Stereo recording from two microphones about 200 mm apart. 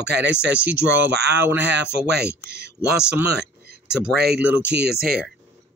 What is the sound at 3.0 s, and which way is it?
Speech, 5° right (ahead or behind).